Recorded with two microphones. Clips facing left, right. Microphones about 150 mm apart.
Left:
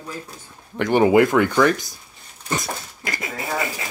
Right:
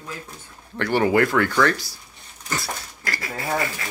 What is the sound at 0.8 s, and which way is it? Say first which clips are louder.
Speech: left 4 dB; 20° left (ahead or behind).